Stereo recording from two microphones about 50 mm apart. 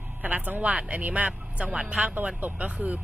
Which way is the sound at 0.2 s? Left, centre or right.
Right.